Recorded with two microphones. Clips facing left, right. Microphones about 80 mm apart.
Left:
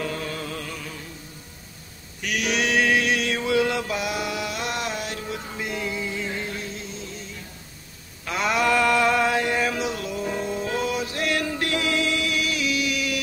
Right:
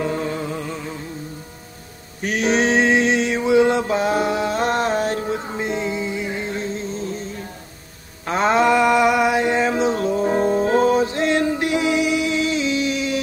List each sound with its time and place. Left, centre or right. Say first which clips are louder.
0.0 s music: right 6 dB; right
2.2 s mantra: right 6 dB; right
8.3 s a sound: right 6 dB; right